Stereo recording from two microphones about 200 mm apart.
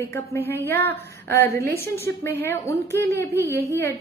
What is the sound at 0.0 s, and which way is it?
A woman's voice, 15° left (ahead or behind).